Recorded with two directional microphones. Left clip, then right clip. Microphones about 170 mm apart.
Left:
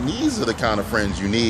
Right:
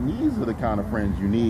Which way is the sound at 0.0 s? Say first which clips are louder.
Left 3 dB; 20° left (ahead or behind).